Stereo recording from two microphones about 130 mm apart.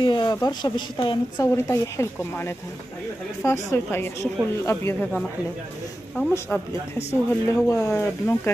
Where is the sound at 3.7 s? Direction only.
15° left (ahead or behind).